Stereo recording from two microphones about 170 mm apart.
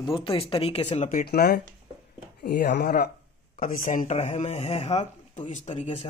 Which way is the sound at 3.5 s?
50° left (ahead or behind).